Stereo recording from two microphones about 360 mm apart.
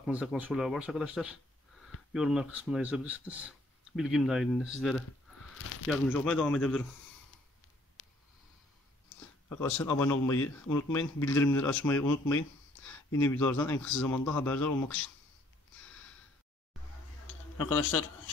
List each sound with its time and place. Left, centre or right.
0.0 s speech: centre
8.0 s a sound: left
9.5 s speech: centre
17.8 s a man's voice: left